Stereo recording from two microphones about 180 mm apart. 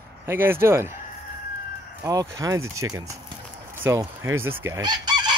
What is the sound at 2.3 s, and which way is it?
Speech, 20° right (ahead or behind).